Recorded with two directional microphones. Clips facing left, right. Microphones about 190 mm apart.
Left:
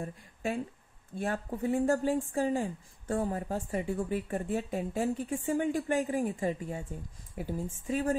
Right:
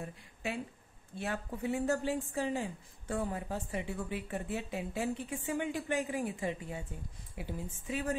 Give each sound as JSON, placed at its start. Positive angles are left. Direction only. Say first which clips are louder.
{"t": 1.1, "sound": "a woman's voice", "louder": "left 4 dB", "side_deg": 45}